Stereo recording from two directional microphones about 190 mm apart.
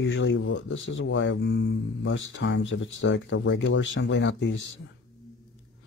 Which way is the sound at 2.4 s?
85° left.